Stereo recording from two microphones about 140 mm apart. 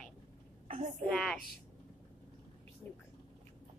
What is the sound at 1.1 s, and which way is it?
Speech, 5° left (ahead or behind).